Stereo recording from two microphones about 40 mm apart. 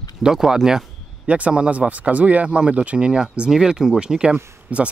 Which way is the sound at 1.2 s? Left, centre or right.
Right.